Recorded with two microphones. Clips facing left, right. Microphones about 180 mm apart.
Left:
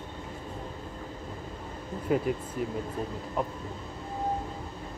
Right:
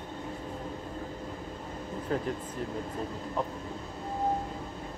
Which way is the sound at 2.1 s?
10° left (ahead or behind).